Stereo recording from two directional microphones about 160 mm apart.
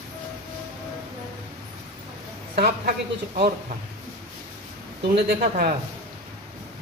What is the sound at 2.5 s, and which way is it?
Speech, 80° right.